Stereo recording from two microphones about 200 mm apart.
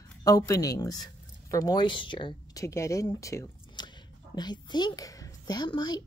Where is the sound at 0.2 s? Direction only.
15° left (ahead or behind).